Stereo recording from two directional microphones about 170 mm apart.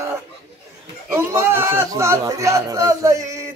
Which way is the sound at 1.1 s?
15° right (ahead or behind).